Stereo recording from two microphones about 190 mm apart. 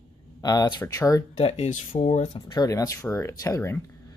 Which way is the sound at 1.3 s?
35° left (ahead or behind).